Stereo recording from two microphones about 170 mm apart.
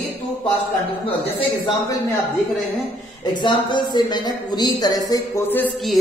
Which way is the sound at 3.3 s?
25° left (ahead or behind).